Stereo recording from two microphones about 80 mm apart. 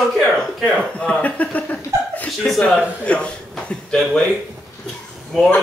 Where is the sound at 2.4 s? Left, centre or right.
Centre.